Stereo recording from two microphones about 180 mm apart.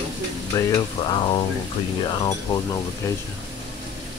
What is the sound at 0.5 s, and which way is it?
Speech, 25° left (ahead or behind).